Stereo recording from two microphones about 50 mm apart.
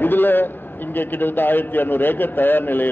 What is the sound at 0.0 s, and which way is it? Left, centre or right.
A man's voice, left.